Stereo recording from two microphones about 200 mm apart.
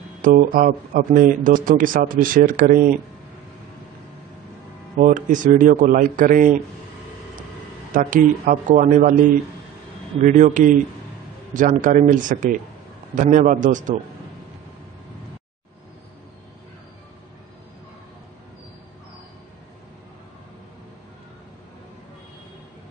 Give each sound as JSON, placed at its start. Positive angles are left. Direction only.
{"t": 0.2, "sound": "speech", "side_deg": -45}
{"t": 4.9, "sound": "a man's voice", "side_deg": -40}
{"t": 7.9, "sound": "a man's voice", "side_deg": -40}
{"t": 10.2, "sound": "a man's voice", "side_deg": -40}